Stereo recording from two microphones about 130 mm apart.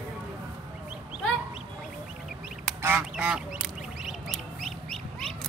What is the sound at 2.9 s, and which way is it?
Duck, 5° right (ahead or behind).